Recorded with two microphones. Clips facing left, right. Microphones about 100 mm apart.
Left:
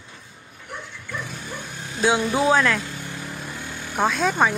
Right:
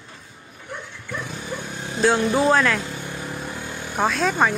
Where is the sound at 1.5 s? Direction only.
20° right (ahead or behind).